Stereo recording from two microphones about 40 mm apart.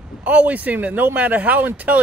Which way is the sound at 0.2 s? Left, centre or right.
Right.